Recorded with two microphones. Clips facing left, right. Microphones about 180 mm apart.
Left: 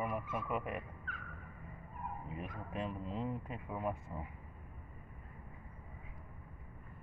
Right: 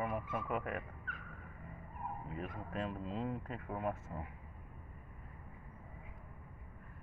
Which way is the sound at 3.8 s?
Centre (ahead or behind).